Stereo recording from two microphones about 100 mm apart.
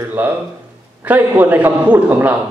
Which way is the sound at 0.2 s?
15° right (ahead or behind).